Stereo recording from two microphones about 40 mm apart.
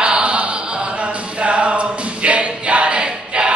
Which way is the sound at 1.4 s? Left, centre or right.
Right.